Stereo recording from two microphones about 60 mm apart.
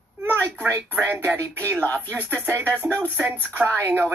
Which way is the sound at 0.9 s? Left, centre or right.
Right.